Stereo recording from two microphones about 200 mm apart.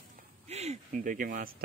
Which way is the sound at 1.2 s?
50° right (ahead or behind).